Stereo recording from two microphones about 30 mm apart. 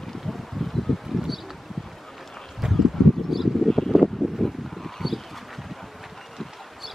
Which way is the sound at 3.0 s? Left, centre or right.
Centre.